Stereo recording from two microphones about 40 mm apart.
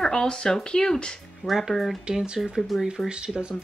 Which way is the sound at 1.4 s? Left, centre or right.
Centre.